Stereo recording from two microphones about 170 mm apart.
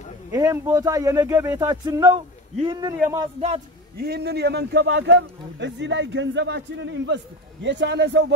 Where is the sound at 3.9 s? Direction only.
70° right (ahead or behind).